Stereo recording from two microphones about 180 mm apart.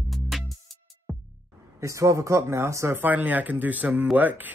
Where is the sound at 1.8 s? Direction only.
15° right (ahead or behind).